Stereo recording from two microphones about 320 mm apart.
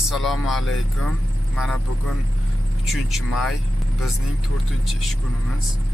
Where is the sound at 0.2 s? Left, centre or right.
Centre.